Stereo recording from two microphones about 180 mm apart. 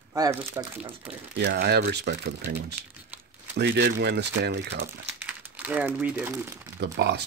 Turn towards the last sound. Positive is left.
turn(degrees=-70)  # may be behind; listen again after turning